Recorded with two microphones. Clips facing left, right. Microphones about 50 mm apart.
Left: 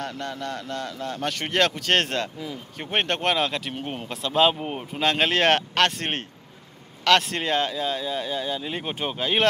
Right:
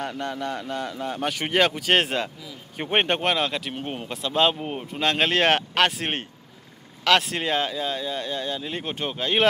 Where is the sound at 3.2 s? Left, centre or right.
Centre.